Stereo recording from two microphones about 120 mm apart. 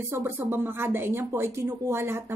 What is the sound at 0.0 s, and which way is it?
A woman's voice, 20° right (ahead or behind).